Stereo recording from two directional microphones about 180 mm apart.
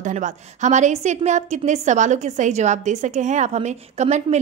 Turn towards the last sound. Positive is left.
turn(degrees=-40)  # may be behind; listen again after turning